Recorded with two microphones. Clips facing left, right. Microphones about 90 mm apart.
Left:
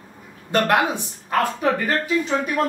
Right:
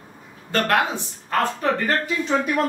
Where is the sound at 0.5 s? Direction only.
15° left (ahead or behind).